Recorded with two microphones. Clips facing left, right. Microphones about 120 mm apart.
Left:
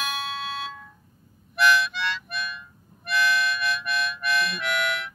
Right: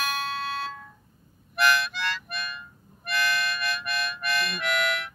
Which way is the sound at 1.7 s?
50° right (ahead or behind).